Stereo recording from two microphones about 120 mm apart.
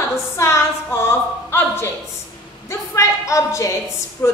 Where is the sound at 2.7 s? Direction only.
25° left (ahead or behind).